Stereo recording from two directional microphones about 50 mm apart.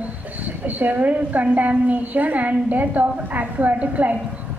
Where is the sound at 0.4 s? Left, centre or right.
Right.